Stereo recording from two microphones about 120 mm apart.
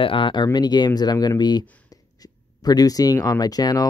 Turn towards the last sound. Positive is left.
turn(degrees=30)  # may be behind; listen again after turning